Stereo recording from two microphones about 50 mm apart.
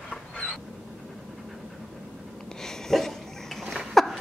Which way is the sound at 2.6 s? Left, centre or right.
Centre.